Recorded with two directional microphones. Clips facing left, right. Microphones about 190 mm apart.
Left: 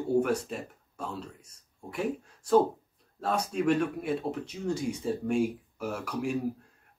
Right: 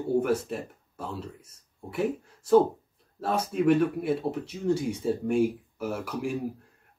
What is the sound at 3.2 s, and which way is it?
Speech, 5° right (ahead or behind).